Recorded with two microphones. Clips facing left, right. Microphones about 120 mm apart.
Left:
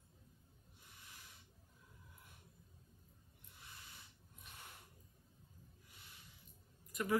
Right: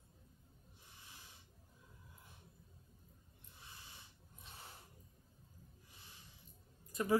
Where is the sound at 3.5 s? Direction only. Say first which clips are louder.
Right 1 dB; 25° right (ahead or behind).